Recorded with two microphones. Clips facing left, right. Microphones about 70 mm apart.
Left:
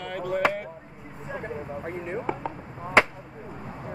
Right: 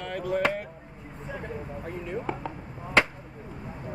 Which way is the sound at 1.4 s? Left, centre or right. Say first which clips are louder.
Left 4 dB; left.